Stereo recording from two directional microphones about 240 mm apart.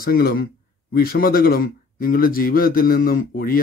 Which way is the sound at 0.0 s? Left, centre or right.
Left.